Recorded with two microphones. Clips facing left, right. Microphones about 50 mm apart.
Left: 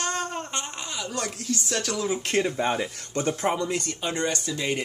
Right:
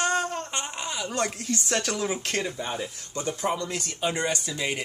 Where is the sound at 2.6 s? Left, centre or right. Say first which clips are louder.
Left 6 dB; left.